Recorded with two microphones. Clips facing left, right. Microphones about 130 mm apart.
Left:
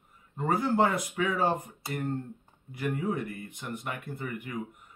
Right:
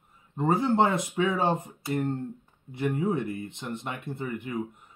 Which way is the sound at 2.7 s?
25° right (ahead or behind).